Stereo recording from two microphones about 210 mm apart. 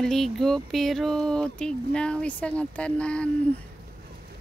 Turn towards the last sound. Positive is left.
turn(degrees=5)  # may be behind; listen again after turning